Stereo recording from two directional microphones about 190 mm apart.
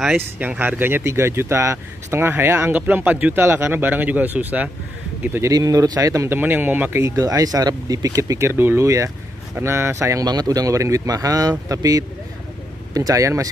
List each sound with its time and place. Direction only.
0.0 s speech: 5° right (ahead or behind)